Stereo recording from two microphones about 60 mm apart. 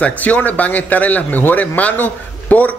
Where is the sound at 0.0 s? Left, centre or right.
Left.